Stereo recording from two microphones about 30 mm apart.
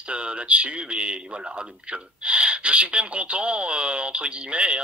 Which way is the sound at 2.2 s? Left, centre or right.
Right.